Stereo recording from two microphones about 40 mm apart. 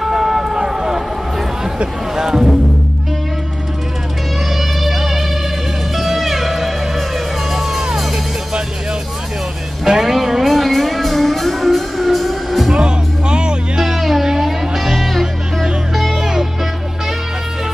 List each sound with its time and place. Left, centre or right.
0.0 s run: centre
2.1 s music: centre
4.6 s music: centre
9.8 s music: centre
12.7 s music: right; by 16.1 s centre
16.1 s music: centre